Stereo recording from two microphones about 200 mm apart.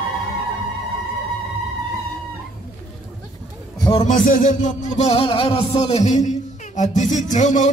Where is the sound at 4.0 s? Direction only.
40° left (ahead or behind).